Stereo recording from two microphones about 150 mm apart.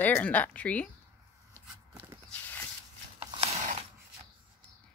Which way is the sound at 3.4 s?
45° right (ahead or behind).